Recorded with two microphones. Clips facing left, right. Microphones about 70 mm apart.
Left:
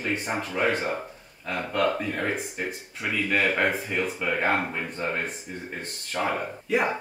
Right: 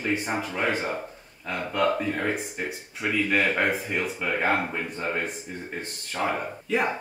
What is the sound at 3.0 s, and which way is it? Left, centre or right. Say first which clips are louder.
Speech: right 1 dB; centre.